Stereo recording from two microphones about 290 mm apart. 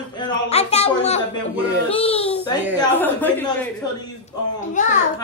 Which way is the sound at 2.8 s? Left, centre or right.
Centre.